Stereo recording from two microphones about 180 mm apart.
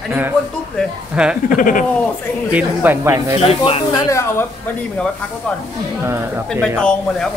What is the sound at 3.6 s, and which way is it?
Speech, 20° left (ahead or behind).